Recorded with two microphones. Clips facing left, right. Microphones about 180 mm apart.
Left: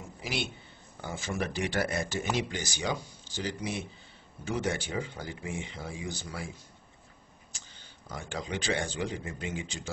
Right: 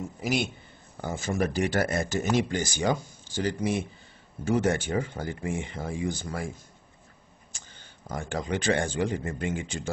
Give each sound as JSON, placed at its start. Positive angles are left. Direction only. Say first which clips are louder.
{"t": 0.2, "sound": "a man's voice", "louder": "right 6 dB", "side_deg": -45}
{"t": 8.1, "sound": "speech", "louder": "right 6 dB", "side_deg": -50}